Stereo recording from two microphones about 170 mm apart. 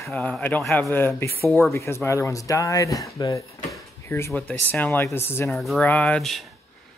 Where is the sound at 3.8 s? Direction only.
15° left (ahead or behind).